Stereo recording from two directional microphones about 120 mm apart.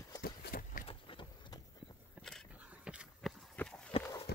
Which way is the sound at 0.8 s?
45° left (ahead or behind).